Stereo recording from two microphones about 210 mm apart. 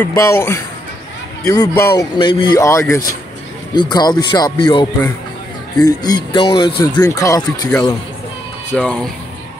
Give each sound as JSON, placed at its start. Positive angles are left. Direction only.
{"t": 0.0, "sound": "speech", "side_deg": 15}
{"t": 8.7, "sound": "speech", "side_deg": 5}